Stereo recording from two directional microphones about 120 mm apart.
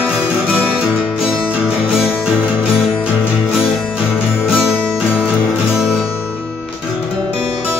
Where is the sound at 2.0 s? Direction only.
15° left (ahead or behind).